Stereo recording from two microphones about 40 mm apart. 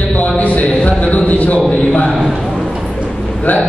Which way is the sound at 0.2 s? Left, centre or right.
Left.